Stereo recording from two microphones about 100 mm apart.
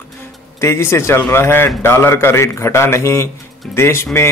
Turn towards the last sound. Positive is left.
turn(degrees=25)  # may be behind; listen again after turning